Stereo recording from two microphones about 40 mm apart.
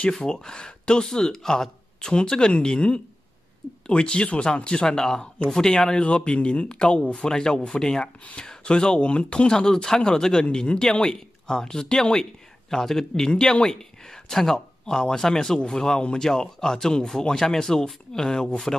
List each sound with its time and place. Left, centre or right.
0.1 s speech: centre
4.8 s speech: centre
6.0 s speech: left
7.2 s speech: centre
9.5 s speech: centre